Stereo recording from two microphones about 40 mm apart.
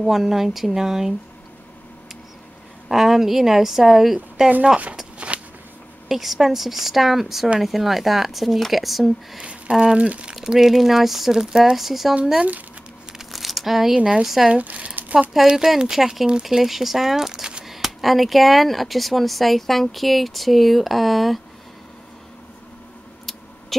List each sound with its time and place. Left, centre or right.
0.0 s a woman's voice: centre
2.9 s a woman's voice: centre
5.2 s a sound: right
6.0 s speech: centre
9.4 s a sound: right
9.9 s speech: right
10.3 s a woman's voice: centre
13.3 s a sound: centre
13.9 s a woman's voice: right
14.2 s a woman's voice: centre
14.5 s speech: right
15.5 s a woman's voice: centre
17.6 s speech: centre
23.7 s a sound: centre